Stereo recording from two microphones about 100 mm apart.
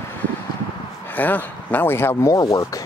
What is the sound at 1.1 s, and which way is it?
Speech, 20° left (ahead or behind).